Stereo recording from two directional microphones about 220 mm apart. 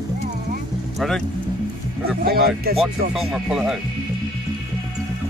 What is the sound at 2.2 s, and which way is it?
Speech, 45° right (ahead or behind).